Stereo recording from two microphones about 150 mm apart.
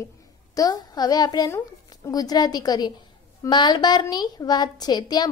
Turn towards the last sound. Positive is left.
turn(degrees=25)  # may be behind; listen again after turning